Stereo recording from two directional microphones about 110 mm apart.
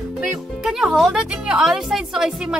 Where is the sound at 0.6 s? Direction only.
5° right (ahead or behind).